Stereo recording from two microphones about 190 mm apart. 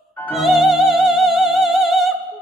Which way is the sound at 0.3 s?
Centre (ahead or behind).